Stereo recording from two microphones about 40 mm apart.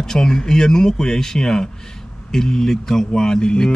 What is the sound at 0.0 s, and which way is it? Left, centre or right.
Speech, centre.